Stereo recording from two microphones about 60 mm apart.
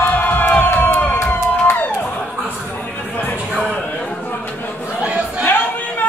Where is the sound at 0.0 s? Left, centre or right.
Left.